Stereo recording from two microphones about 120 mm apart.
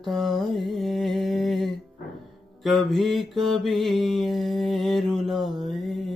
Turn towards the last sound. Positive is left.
turn(degrees=0)  # may be behind; listen again after turning